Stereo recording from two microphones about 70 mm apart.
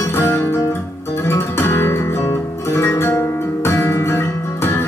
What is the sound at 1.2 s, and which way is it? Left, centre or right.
Guitar, left.